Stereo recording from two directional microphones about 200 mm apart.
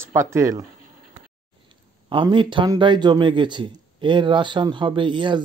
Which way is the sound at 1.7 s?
25° right (ahead or behind).